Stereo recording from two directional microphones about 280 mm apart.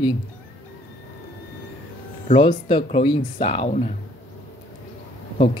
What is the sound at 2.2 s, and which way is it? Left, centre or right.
Speech, left.